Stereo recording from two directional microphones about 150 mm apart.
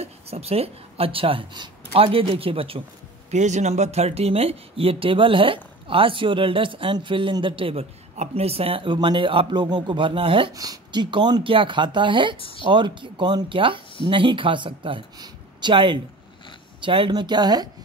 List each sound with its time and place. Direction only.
0.0 s speech: 45° right (ahead or behind)
3.3 s speech: 50° right (ahead or behind); by 10.5 s 35° right (ahead or behind)
10.5 s speech: 25° right (ahead or behind)